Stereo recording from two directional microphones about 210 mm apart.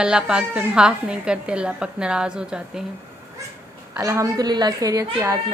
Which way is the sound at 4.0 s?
15° right (ahead or behind).